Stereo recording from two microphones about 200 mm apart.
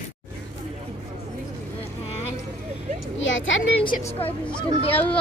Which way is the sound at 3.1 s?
75° left (ahead or behind).